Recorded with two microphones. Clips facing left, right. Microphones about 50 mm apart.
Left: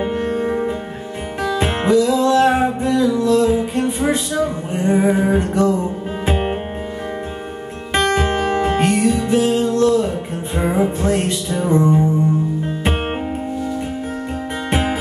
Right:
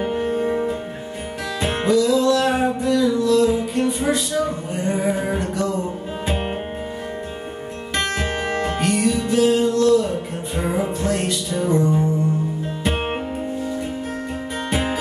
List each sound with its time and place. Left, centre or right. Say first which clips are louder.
0.1 s music: left 1 dB; centre
8.2 s music: left 5 dB; centre
14.7 s music: left 3 dB; left